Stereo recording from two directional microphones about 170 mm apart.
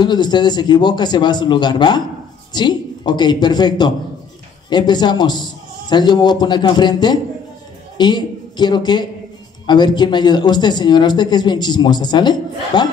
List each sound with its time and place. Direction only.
0.0 s a man's voice: 25° left (ahead or behind)